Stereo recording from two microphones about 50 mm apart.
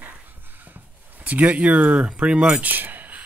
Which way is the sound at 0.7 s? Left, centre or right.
Right.